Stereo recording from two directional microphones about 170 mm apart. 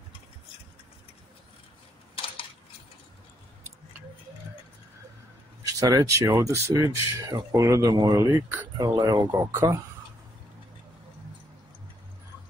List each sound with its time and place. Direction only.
5.6 s speech: 20° right (ahead or behind)